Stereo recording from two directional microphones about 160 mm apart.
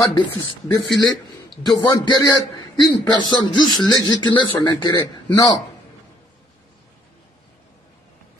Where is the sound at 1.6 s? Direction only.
25° left (ahead or behind).